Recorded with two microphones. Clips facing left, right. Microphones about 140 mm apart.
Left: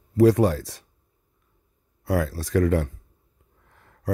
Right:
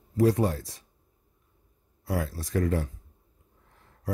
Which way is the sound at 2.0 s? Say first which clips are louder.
Left 6 dB; 90° left.